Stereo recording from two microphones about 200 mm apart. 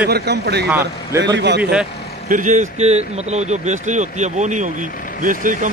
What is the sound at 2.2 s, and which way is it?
Speech, 40° right (ahead or behind).